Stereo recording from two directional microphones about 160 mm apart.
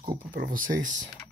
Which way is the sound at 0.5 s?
55° right (ahead or behind).